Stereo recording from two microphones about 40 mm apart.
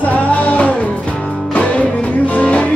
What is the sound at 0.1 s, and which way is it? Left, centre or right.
Music, left.